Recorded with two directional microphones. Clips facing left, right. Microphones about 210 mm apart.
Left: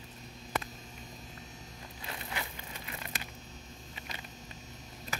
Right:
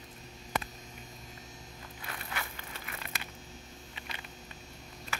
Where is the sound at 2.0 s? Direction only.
20° left (ahead or behind).